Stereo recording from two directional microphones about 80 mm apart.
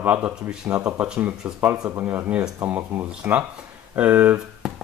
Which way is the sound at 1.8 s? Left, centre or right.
Right.